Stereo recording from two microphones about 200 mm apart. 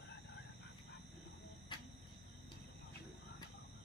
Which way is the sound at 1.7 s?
25° left (ahead or behind).